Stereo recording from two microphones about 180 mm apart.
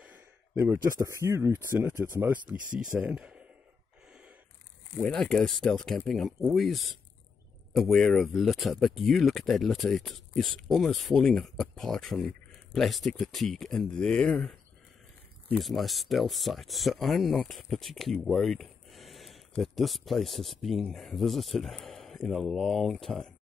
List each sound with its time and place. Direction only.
0.6 s speech: 15° right (ahead or behind)
2.5 s speech: 50° right (ahead or behind)
2.9 s speech: 5° right (ahead or behind)
4.1 s a sound: 5° right (ahead or behind)
4.9 s speech: 5° left (ahead or behind)